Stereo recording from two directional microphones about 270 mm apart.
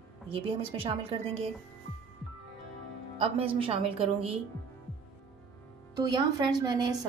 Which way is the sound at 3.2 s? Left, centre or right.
Centre.